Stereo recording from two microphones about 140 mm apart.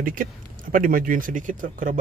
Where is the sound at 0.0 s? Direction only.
80° right.